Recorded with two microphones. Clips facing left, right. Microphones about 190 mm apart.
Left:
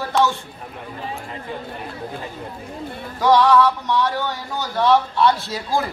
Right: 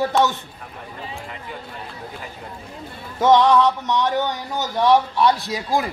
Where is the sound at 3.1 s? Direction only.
20° right (ahead or behind).